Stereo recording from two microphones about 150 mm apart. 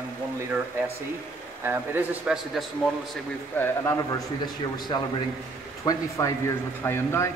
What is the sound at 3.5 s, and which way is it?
Speech, 15° left (ahead or behind).